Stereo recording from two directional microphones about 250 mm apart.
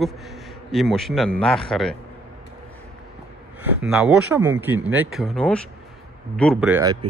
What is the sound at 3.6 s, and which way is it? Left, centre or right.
A man's voice, centre.